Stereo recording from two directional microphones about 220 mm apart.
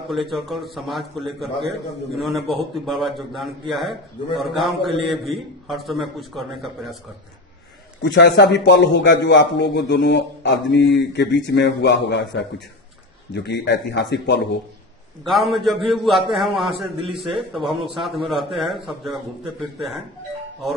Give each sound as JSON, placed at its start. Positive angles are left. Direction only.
{"t": 0.1, "sound": "a man's voice", "side_deg": 0}
{"t": 8.0, "sound": "a man's voice", "side_deg": 50}
{"t": 15.2, "sound": "a man's voice", "side_deg": 0}